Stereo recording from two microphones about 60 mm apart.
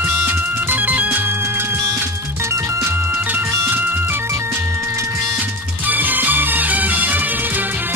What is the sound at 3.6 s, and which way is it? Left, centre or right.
Music, right.